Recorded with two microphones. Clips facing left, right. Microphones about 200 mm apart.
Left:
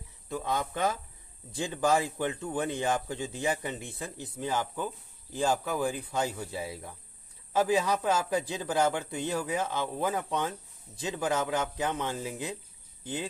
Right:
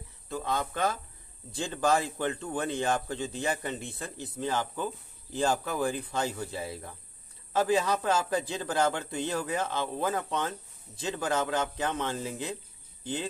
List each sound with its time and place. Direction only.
0.3 s speech: 15° left (ahead or behind)